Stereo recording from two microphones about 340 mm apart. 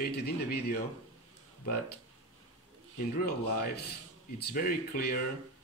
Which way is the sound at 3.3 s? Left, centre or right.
Left.